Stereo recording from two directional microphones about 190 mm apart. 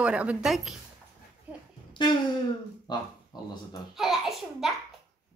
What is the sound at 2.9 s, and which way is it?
Speech, 20° left (ahead or behind).